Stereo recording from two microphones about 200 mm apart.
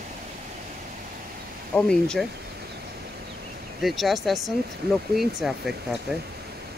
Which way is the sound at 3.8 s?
Centre (ahead or behind).